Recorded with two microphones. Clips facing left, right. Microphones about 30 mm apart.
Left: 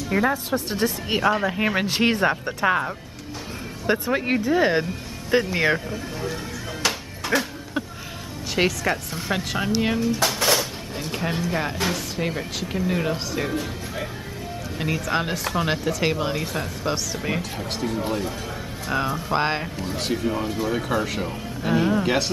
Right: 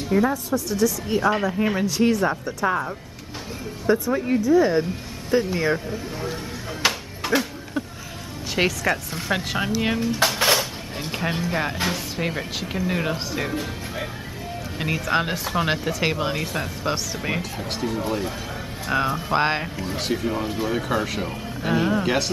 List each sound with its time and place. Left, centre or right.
0.1 s speech: left
3.8 s speech: left
4.1 s speech: left
6.9 s music: centre
8.5 s speech: centre
9.9 s speech: right; by 22.2 s centre